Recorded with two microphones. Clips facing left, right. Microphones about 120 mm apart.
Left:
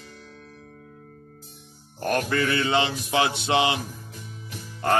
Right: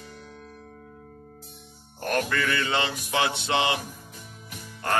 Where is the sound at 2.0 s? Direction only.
35° left (ahead or behind).